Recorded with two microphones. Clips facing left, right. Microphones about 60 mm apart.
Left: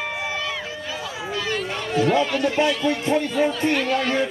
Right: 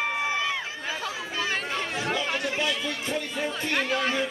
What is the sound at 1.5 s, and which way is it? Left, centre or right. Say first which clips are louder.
Speech: left 5 dB; right.